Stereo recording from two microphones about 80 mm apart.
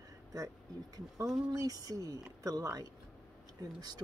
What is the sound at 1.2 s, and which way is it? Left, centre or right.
Speech, centre.